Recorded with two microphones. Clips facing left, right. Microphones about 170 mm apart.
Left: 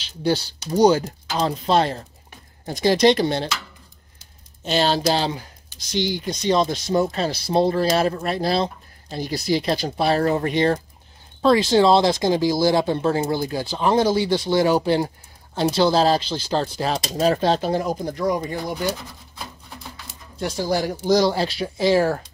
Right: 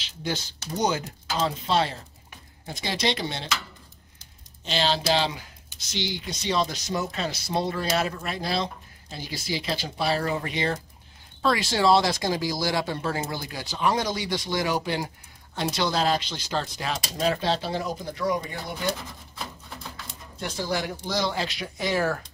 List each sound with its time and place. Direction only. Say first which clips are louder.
0.2 s speech: left 9 dB; 35° left (ahead or behind)
4.6 s speech: left 5 dB; 45° left (ahead or behind)
5.9 s speech: left 8 dB; 50° left (ahead or behind)
6.2 s speech: left 6 dB; 40° left (ahead or behind)
11.4 s speech: left 7 dB; 25° left (ahead or behind)
20.3 s speech: left 6 dB; 35° left (ahead or behind)